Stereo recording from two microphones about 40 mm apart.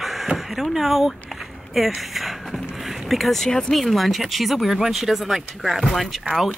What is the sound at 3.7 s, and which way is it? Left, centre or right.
Speech, centre.